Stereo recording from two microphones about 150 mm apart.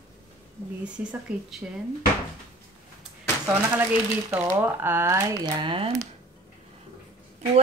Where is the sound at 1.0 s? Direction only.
10° right (ahead or behind).